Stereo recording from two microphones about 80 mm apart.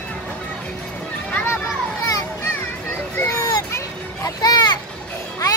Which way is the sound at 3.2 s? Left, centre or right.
Left.